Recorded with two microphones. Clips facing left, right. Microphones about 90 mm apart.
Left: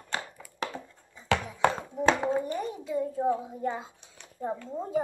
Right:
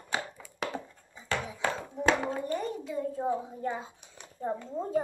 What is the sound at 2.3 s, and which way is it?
A child's voice, 10° left (ahead or behind).